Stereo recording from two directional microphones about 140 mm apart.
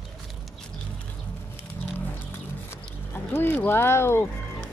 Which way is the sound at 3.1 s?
15° left (ahead or behind).